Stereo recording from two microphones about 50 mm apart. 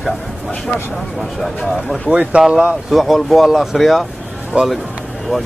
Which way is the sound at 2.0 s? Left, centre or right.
Right.